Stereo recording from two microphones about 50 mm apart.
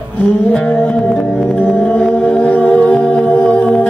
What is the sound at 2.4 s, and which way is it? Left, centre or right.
Music, left.